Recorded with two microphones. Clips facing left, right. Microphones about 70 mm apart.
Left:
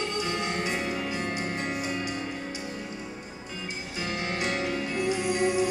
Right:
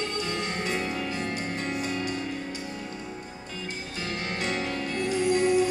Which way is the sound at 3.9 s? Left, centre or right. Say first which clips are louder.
Left 2 dB; centre.